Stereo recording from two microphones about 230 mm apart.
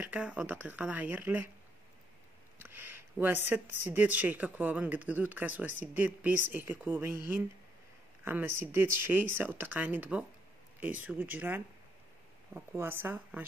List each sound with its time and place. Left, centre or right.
0.0 s speech: centre
2.6 s speech: centre